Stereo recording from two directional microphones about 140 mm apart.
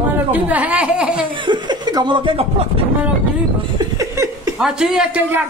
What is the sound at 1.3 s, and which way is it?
Speech, 35° right (ahead or behind).